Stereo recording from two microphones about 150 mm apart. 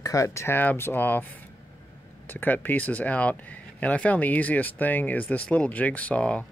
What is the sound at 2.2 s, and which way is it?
Speech, 10° left (ahead or behind).